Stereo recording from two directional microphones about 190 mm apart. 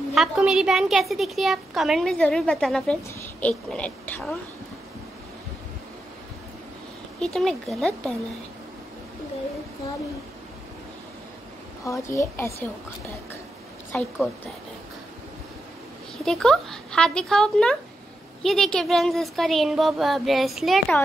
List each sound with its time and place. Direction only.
0.1 s a woman's voice: centre (ahead or behind)
7.2 s a woman's voice: centre (ahead or behind)
11.8 s speech: 15° left (ahead or behind)
13.9 s speech: 10° left (ahead or behind)
16.3 s a woman's voice: centre (ahead or behind)